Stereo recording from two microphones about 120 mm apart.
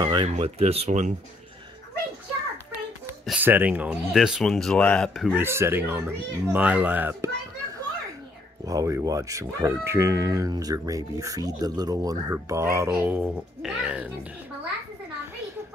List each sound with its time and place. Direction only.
0.0 s speech: 40° right (ahead or behind)
0.4 s speech: 55° right (ahead or behind); by 1.1 s 75° right (ahead or behind)
3.3 s speech: 15° right (ahead or behind)
4.1 s speech: 5° right (ahead or behind)
5.3 s speech: 20° right (ahead or behind)
8.6 s speech: 25° right (ahead or behind)
13.2 s speech: 5° right (ahead or behind)